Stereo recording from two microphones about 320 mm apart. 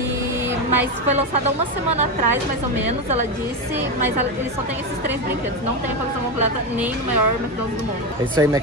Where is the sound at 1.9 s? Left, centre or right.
Right.